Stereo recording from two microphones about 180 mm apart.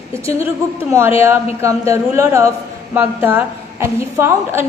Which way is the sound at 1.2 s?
15° right (ahead or behind).